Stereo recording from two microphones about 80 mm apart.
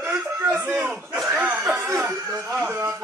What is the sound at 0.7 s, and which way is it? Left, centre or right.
Speech, centre.